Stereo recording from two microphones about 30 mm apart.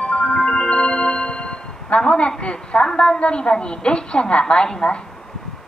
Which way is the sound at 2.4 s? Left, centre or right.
Left.